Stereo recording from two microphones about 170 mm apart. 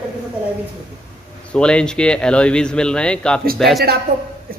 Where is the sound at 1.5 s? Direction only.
5° left (ahead or behind).